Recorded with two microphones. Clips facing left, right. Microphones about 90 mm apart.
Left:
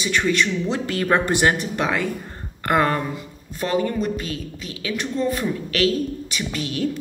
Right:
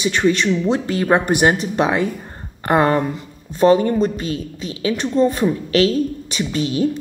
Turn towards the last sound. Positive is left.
turn(degrees=-25)  # may be behind; listen again after turning